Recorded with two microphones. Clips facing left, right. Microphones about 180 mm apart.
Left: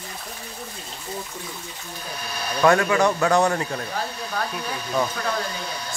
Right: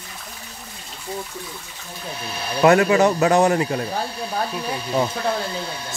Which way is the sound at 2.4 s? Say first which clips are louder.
Right 3 dB; 25° right (ahead or behind).